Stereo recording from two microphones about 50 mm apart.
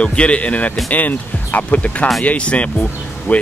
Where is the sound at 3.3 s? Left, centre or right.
Left.